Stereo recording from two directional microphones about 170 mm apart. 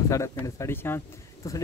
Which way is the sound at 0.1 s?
15° left (ahead or behind).